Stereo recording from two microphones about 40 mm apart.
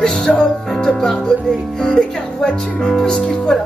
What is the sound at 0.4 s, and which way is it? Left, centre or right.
Music, centre.